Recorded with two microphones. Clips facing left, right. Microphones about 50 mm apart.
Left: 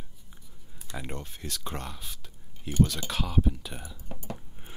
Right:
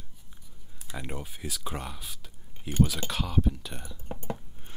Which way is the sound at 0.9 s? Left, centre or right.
Centre.